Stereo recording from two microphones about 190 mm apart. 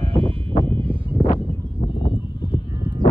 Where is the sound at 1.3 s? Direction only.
30° left (ahead or behind).